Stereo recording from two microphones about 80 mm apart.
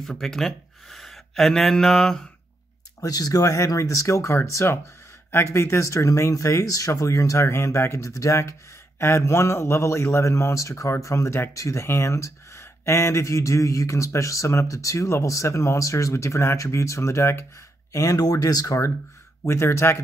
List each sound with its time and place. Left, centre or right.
0.0 s speech: centre
3.0 s speech: left
19.4 s speech: left